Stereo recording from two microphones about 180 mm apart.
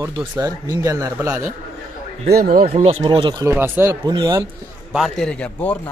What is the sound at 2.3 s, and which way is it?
Speech, 55° right (ahead or behind).